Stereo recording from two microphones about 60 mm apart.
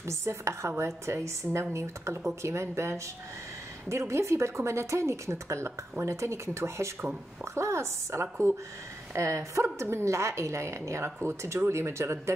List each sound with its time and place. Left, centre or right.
0.0 s speech: right
4.1 s speech: right